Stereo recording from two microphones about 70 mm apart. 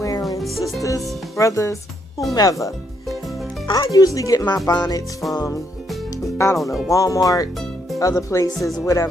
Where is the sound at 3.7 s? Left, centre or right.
Left.